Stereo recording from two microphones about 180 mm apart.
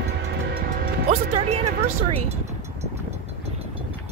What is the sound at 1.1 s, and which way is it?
Music, 35° right (ahead or behind).